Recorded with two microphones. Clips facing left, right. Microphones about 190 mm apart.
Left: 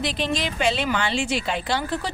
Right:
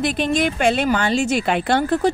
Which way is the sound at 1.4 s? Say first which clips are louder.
Right 7 dB; 60° right (ahead or behind).